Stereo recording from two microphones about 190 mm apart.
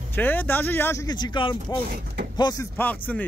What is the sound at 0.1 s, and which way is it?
Speech, 10° left (ahead or behind).